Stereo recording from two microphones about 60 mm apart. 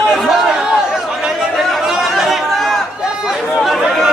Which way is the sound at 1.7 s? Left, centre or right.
Centre.